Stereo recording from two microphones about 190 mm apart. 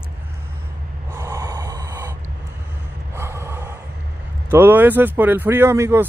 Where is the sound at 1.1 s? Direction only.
15° right (ahead or behind).